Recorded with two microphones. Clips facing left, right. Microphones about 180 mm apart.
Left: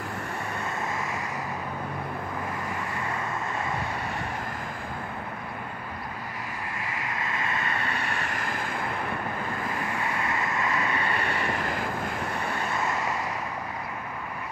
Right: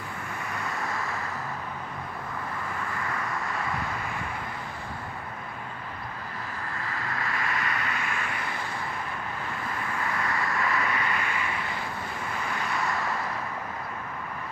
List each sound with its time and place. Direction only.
6.8 s vehicle: 15° left (ahead or behind)
10.2 s vehicle: 20° left (ahead or behind); by 11.8 s 50° left (ahead or behind)